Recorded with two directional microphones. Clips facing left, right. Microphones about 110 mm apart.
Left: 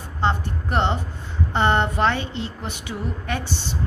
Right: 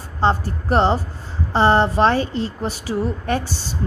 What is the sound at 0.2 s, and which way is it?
A woman's voice, 35° right (ahead or behind).